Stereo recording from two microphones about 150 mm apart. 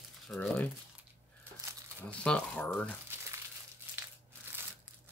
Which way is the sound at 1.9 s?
5° left (ahead or behind).